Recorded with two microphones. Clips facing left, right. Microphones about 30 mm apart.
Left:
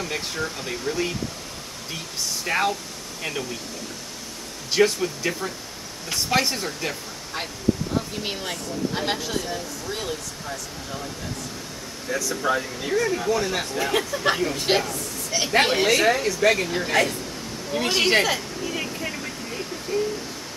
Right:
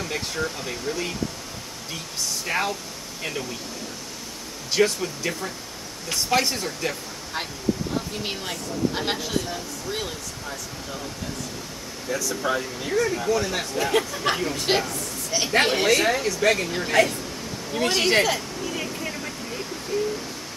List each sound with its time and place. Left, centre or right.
0.0 s speech: centre
2.4 s speech: centre
4.7 s speech: centre
12.1 s speech: centre
17.6 s a sound: centre
19.9 s speech: centre